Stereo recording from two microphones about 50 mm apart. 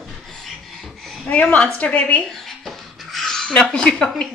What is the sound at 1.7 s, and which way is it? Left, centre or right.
Speech, left.